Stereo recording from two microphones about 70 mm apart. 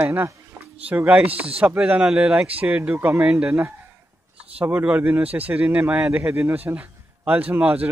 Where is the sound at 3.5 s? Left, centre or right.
Right.